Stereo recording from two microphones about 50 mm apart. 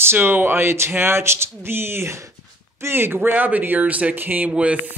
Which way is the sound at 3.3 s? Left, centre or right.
Right.